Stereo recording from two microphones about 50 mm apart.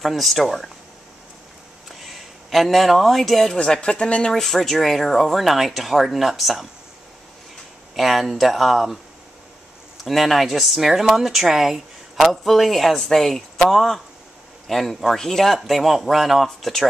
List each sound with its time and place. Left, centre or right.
0.0 s speech: centre
2.0 s speech: centre
3.5 s speech: centre
4.4 s speech: centre
7.9 s speech: centre
10.0 s speech: centre